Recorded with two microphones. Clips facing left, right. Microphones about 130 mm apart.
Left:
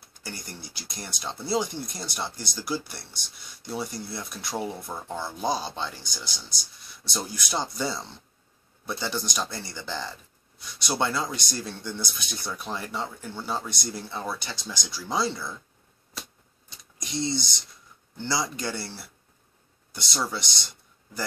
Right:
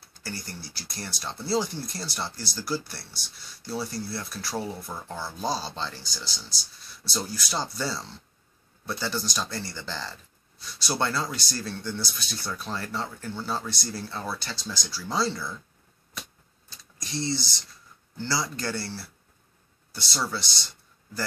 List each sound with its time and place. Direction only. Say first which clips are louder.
0.1 s speech: right 2 dB; 15° left (ahead or behind)
16.6 s a sound: left 1 dB; 20° left (ahead or behind)
18.1 s speech: left 1 dB; 20° left (ahead or behind)